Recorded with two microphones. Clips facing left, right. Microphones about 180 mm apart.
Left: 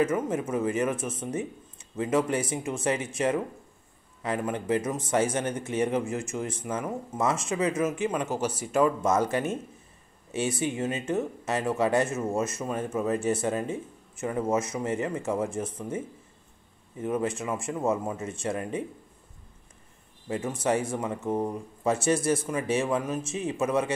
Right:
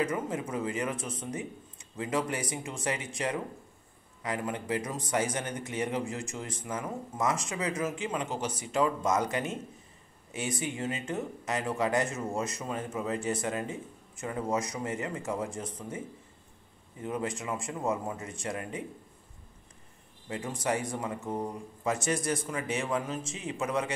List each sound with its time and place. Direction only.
0.0 s speech: 25° left (ahead or behind)
8.3 s speech: 10° left (ahead or behind)
10.3 s speech: 25° left (ahead or behind)
17.0 s speech: 25° left (ahead or behind)
20.2 s speech: 25° left (ahead or behind)